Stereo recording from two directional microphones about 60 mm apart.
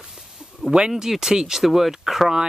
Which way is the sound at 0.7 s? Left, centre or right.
Centre.